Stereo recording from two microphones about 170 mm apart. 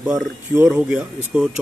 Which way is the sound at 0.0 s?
5° right (ahead or behind).